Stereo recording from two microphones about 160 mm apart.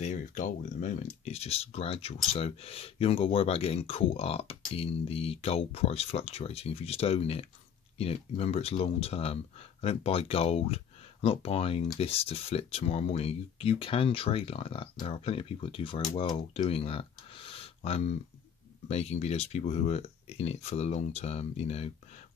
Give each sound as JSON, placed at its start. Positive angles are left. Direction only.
{"t": 0.0, "sound": "speech", "side_deg": 50}